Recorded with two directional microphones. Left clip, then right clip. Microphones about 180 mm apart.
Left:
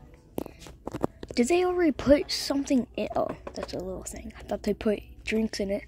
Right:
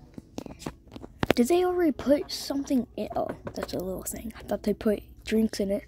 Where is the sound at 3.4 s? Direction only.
20° right (ahead or behind).